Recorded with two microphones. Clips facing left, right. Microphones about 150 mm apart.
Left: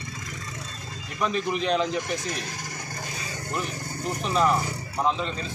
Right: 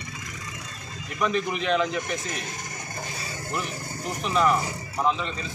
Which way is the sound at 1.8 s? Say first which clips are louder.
Even; centre (ahead or behind).